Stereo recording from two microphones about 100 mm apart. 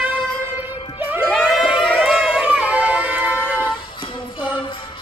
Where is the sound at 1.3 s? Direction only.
5° right (ahead or behind).